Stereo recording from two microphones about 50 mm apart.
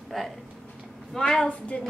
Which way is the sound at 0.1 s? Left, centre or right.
Centre.